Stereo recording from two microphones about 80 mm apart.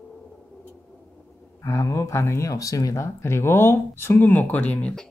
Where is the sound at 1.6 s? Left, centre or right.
Left.